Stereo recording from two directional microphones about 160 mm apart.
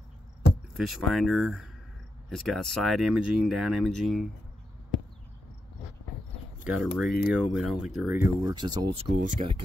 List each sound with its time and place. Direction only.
0.7 s speech: centre (ahead or behind)
6.6 s speech: centre (ahead or behind)
8.1 s speech: 15° right (ahead or behind)
8.9 s speech: 35° right (ahead or behind)